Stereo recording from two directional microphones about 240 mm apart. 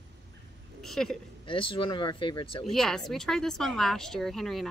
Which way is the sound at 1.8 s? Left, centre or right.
Left.